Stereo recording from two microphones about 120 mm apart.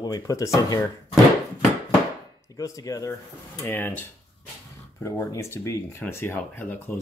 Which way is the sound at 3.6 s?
15° left (ahead or behind).